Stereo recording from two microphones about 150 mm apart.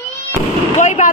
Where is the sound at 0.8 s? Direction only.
55° left (ahead or behind).